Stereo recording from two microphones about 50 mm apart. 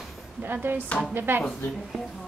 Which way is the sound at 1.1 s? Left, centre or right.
Right.